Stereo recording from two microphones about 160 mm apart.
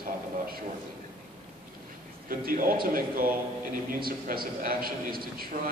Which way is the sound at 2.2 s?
60° right (ahead or behind).